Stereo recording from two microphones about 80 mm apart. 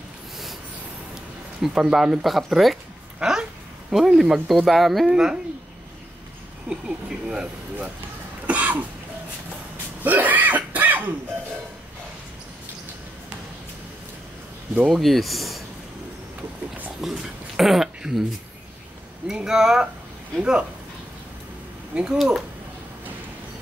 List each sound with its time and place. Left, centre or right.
1.6 s speech: centre
3.2 s dog: centre
3.9 s speech: centre
6.7 s speech: centre
8.5 s cough: centre
10.0 s cough: right
14.9 s speech: centre
17.0 s a sound: centre
19.2 s speech: centre
21.9 s speech: centre